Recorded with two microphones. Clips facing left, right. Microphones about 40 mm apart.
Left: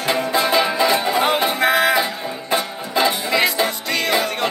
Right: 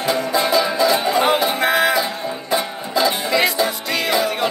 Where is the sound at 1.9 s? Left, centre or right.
Left.